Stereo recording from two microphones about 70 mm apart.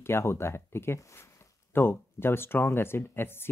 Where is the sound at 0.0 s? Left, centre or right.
Left.